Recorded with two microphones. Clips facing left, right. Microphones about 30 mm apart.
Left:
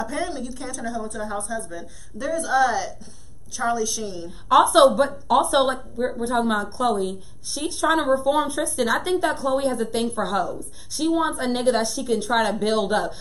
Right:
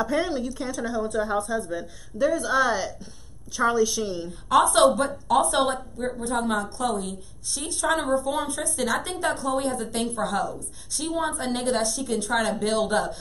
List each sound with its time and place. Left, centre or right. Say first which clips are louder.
0.0 s a woman's voice: right 3 dB; centre
4.3 s a woman's voice: left 4 dB; centre